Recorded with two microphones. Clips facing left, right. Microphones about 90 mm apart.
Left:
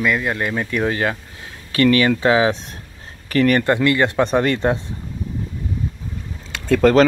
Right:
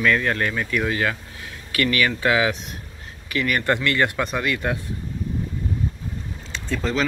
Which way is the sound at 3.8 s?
25° left (ahead or behind).